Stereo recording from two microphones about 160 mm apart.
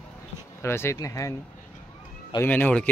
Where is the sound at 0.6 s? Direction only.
15° left (ahead or behind).